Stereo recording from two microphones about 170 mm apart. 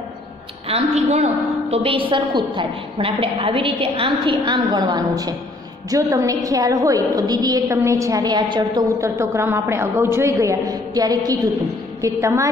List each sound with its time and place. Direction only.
0.7 s a woman's voice: 35° right (ahead or behind); by 12.4 s 20° right (ahead or behind)